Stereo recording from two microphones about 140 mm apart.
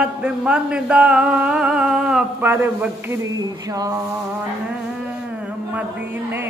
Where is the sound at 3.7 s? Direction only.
25° right (ahead or behind).